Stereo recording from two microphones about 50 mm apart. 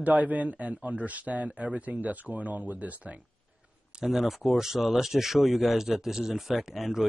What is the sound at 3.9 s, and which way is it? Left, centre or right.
Speech, centre.